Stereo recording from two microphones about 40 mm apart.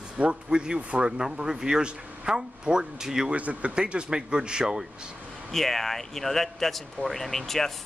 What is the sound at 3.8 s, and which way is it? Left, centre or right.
Speech, right.